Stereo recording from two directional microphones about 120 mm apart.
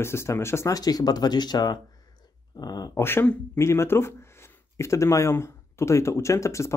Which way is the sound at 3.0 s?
15° left (ahead or behind).